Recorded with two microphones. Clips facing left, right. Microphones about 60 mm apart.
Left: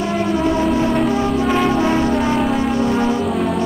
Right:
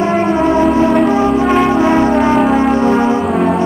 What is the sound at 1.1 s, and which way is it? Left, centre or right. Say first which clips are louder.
Church bell: right 5 dB; right.